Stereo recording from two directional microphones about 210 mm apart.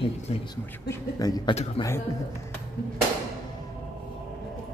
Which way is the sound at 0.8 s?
20° left (ahead or behind).